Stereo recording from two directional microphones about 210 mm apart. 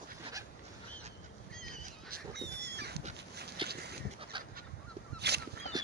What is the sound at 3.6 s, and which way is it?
Dog, 25° right (ahead or behind).